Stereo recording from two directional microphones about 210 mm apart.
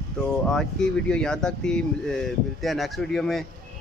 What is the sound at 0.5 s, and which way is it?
Speech, 5° left (ahead or behind).